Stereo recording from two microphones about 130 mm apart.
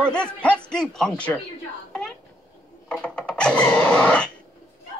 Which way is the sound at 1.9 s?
5° left (ahead or behind).